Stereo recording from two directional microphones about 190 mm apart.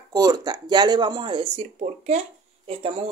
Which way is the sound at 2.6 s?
30° right (ahead or behind).